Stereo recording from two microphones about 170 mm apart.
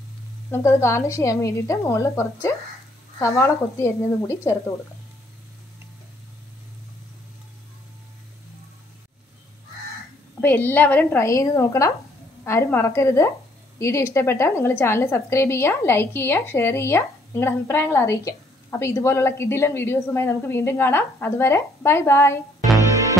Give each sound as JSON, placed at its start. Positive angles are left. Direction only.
{"t": 0.5, "sound": "a woman's voice", "side_deg": 15}
{"t": 10.4, "sound": "a woman's voice", "side_deg": 10}